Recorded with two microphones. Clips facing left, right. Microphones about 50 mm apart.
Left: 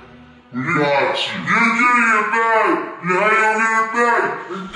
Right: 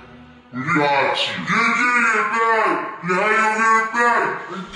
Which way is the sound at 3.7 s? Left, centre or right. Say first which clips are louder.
Left 1 dB; centre.